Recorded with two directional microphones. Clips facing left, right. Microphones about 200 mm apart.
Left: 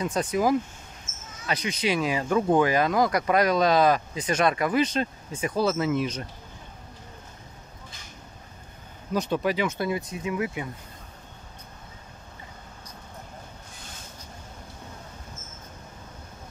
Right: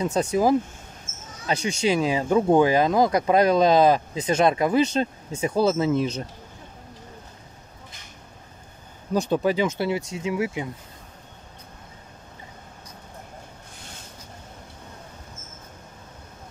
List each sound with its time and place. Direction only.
0.0 s speech: 25° right (ahead or behind)
9.1 s speech: 30° right (ahead or behind)